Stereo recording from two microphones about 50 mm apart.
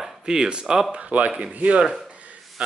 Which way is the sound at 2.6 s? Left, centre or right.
Centre.